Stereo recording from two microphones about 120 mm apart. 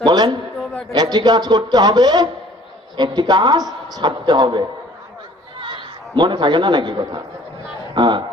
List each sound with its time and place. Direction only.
0.0 s a woman's voice: 40° right (ahead or behind)